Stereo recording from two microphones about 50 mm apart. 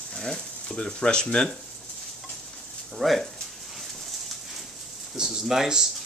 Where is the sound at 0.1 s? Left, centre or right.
Centre.